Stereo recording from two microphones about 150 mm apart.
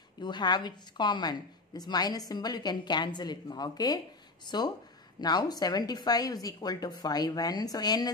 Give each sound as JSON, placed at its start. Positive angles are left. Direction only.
{"t": 0.2, "sound": "a woman's voice", "side_deg": 30}